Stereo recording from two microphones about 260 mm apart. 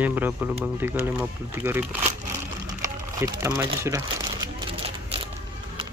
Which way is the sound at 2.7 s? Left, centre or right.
Centre.